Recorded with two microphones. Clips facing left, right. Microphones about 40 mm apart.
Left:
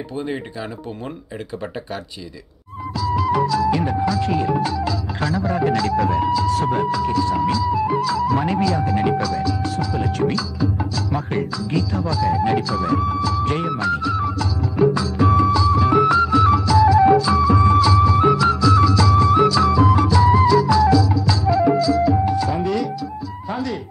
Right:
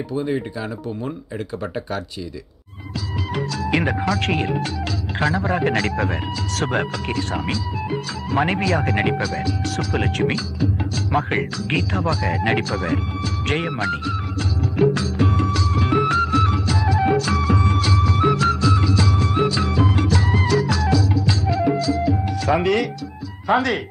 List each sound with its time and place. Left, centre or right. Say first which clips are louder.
0.1 s speech: right 4 dB; centre
3.0 s music: left 8 dB; right
5.3 s a man's voice: left 3 dB; right
6.4 s speech: left 4 dB; right
9.2 s a man's voice: left 2 dB; right
9.8 s speech: even; right
10.0 s speech: left 1 dB; right
13.7 s music: left 3 dB; right
16.8 s music: left 7 dB; right
17.2 s music: left 5 dB; right
19.4 s music of bollywood: left 5 dB; right
22.3 s speech: right 2 dB; right